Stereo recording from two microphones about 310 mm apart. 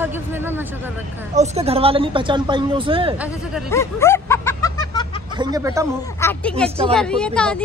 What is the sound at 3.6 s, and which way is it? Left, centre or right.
Bow-wow, centre.